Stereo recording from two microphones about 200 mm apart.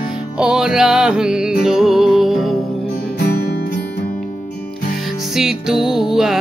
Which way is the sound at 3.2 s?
50° left (ahead or behind).